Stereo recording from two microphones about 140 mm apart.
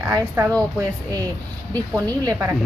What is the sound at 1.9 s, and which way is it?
Speech, 25° right (ahead or behind).